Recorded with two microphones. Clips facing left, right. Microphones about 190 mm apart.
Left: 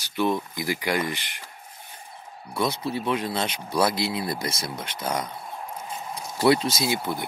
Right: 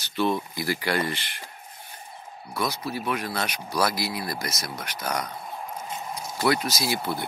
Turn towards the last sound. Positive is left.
turn(degrees=20)  # may be behind; listen again after turning